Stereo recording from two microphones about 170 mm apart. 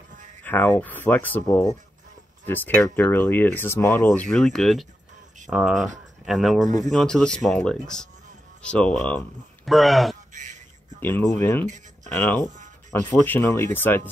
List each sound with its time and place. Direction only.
0.4 s speech: 10° left (ahead or behind)
10.3 s music: 45° right (ahead or behind)
11.0 s speech: 10° left (ahead or behind)
11.6 s speech: 45° right (ahead or behind)
12.1 s speech: 10° left (ahead or behind)